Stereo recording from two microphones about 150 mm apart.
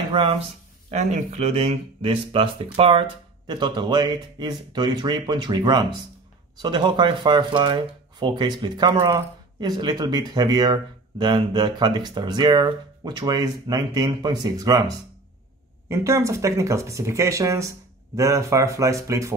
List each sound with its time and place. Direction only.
0.1 s speech: 35° right (ahead or behind)
0.8 s speech: 50° right (ahead or behind); by 14.8 s 25° right (ahead or behind)
15.9 s speech: 20° right (ahead or behind)